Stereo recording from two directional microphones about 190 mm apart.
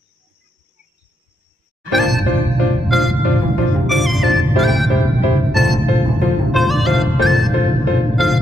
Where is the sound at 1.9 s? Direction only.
Centre (ahead or behind).